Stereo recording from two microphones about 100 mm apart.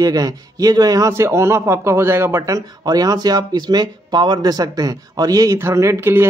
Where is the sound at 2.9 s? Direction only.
40° right (ahead or behind).